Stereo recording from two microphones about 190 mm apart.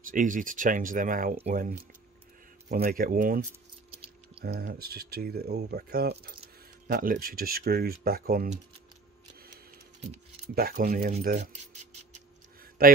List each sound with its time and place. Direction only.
0.0 s speech: 45° right (ahead or behind)
4.4 s speech: 55° right (ahead or behind)
10.5 s speech: 55° right (ahead or behind)
12.8 s speech: 50° right (ahead or behind)